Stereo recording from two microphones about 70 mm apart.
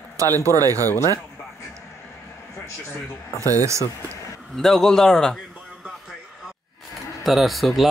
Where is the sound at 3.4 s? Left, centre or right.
Right.